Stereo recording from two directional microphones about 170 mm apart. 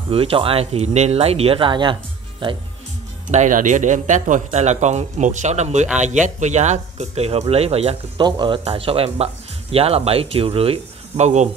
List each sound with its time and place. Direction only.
0.1 s speech: 35° right (ahead or behind)
3.3 s a man's voice: 45° right (ahead or behind)